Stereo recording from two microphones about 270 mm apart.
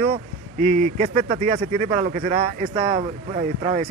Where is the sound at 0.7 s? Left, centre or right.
Right.